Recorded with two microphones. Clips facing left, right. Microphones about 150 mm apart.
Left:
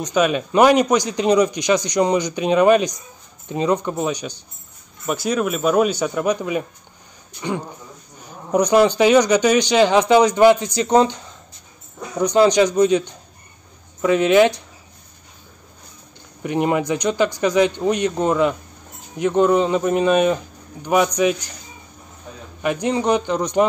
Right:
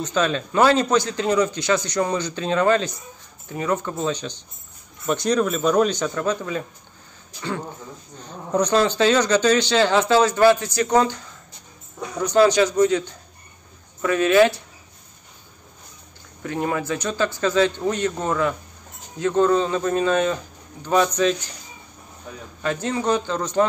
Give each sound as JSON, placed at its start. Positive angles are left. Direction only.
{"t": 0.0, "sound": "a man's voice", "side_deg": 15}
{"t": 8.2, "sound": "a man's voice", "side_deg": 10}
{"t": 16.4, "sound": "a man's voice", "side_deg": 20}
{"t": 22.6, "sound": "a man's voice", "side_deg": 15}